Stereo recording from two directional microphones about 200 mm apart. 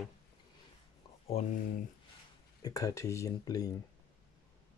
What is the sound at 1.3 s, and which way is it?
Speech, 30° left (ahead or behind).